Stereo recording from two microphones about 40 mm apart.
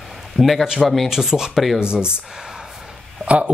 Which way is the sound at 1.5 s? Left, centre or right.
Centre.